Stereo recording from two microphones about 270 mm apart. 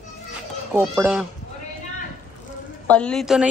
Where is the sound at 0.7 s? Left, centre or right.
Centre.